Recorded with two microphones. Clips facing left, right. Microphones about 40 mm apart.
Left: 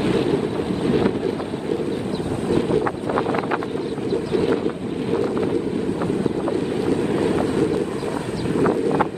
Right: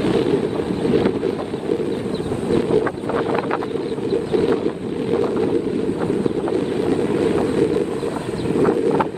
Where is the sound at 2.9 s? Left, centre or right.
Right.